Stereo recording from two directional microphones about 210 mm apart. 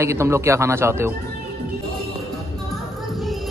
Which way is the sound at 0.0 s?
15° right (ahead or behind).